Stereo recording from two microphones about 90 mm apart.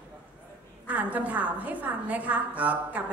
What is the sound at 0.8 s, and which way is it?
A woman's voice, 15° right (ahead or behind).